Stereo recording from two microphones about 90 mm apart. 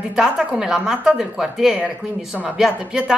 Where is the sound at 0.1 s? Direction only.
10° right (ahead or behind).